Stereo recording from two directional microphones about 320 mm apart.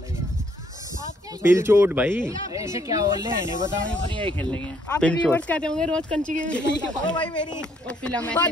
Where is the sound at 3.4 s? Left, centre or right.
Centre.